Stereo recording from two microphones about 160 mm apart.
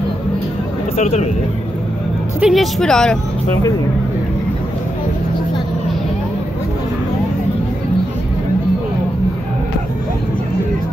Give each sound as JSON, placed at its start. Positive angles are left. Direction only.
{"t": 0.9, "sound": "speech", "side_deg": 45}
{"t": 2.4, "sound": "a woman's voice", "side_deg": 0}